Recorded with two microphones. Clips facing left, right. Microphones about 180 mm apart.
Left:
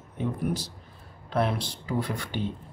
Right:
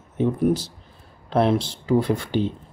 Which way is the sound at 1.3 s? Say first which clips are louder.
Right 7 dB; 30° right (ahead or behind).